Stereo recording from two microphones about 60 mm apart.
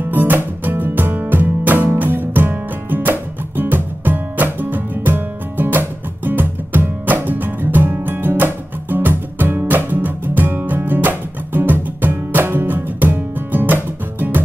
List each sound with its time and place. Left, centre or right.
0.1 s music: right